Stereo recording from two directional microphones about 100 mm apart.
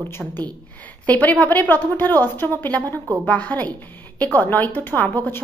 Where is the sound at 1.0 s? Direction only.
15° left (ahead or behind).